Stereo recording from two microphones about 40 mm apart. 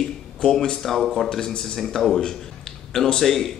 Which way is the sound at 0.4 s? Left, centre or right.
Left.